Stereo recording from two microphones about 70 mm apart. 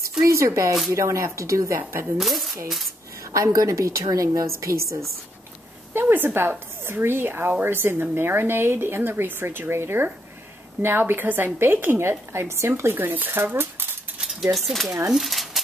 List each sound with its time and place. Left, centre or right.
0.2 s a woman's voice: right
2.1 s speech: centre
3.5 s a woman's voice: right
5.9 s a woman's voice: right
14.2 s speech: centre
15.0 s a sound: centre